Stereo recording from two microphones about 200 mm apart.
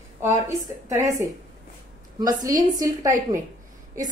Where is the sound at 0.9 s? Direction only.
15° right (ahead or behind).